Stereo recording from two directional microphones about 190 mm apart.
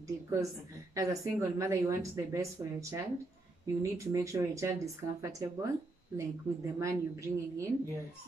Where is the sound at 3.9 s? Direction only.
15° right (ahead or behind).